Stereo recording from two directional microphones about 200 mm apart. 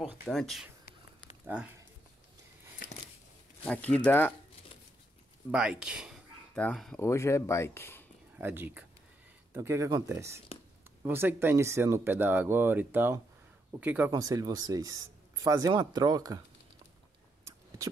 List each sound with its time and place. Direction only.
0.0 s speech: centre (ahead or behind)
1.4 s a sound: 10° right (ahead or behind)
3.6 s speech: 5° left (ahead or behind)
5.5 s speech: 5° right (ahead or behind)
7.0 s speech: 15° left (ahead or behind)
8.4 s speech: 10° right (ahead or behind)